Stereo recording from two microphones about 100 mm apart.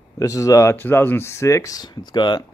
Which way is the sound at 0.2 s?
35° left (ahead or behind).